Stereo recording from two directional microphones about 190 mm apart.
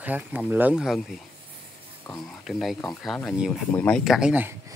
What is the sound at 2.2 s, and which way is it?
Speech, centre (ahead or behind).